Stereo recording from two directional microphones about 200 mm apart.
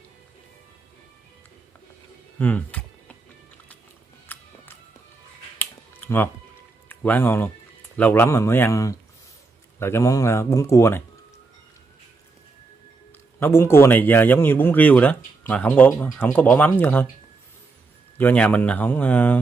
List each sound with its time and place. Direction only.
2.3 s a sound: 5° left (ahead or behind)
4.3 s music: 10° left (ahead or behind)
5.6 s music: 10° left (ahead or behind)
6.9 s speech: 10° left (ahead or behind)
13.4 s speech: 10° left (ahead or behind)
18.1 s speech: 5° left (ahead or behind)